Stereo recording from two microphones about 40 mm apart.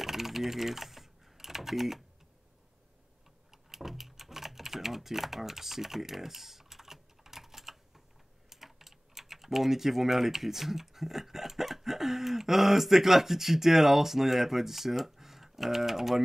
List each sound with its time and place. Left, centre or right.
0.0 s typing: centre
3.7 s typing: centre
8.5 s speech: centre